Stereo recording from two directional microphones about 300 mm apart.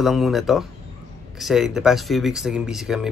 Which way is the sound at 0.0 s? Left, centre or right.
Centre.